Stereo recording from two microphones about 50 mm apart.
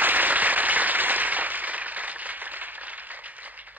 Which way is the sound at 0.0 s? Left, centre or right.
Right.